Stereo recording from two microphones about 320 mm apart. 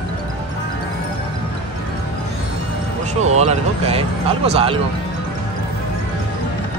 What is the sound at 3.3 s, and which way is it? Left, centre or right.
Speech, centre.